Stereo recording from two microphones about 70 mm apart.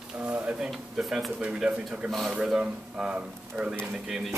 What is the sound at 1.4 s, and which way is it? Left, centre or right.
Speech, centre.